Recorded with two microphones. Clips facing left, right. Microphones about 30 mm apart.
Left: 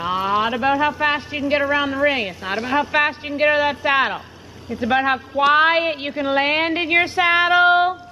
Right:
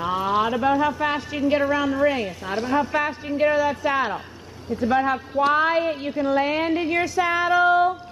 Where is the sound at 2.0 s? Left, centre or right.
Left.